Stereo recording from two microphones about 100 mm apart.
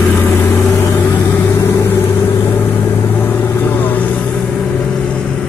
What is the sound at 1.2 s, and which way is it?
Vehicle, 30° left (ahead or behind).